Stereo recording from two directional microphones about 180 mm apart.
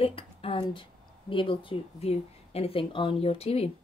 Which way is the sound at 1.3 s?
30° left (ahead or behind).